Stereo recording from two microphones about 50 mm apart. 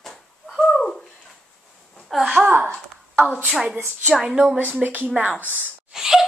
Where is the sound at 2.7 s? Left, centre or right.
Left.